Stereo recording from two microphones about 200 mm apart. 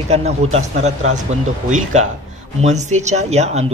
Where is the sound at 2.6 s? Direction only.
35° right (ahead or behind).